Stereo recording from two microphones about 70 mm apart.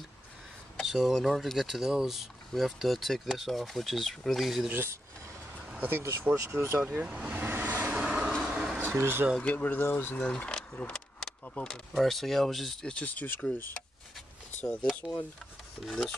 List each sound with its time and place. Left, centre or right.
0.7 s speech: centre
4.7 s a sound: right
5.8 s speech: right
6.3 s speech: right
6.6 s speech: right
7.2 s vehicle: right
8.7 s speech: right
9.4 s speech: left
9.8 s speech: left
10.1 s speech: centre
11.9 s speech: centre
12.9 s speech: left
15.8 s speech: centre